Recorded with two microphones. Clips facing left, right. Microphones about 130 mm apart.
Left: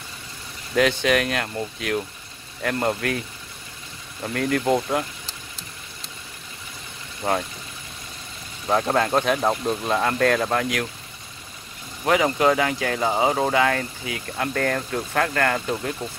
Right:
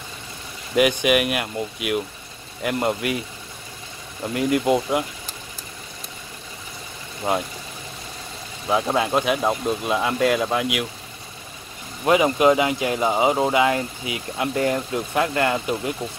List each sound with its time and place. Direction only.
0.7 s speech: 15° right (ahead or behind)
4.3 s speech: 15° right (ahead or behind)
7.2 s speech: 5° right (ahead or behind)
8.6 s speech: 5° right (ahead or behind)
12.1 s speech: 20° right (ahead or behind)